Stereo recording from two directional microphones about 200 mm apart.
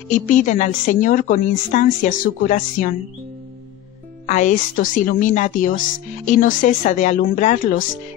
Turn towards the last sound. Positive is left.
turn(degrees=40)  # may be behind; listen again after turning